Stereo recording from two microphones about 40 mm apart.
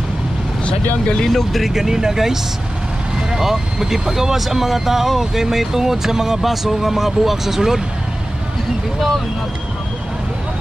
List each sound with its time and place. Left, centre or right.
1.0 s speech: centre
1.3 s speech: centre
1.7 s speech: centre